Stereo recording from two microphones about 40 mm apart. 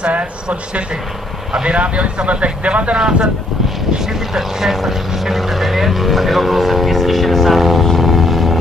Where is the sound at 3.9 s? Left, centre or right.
Centre.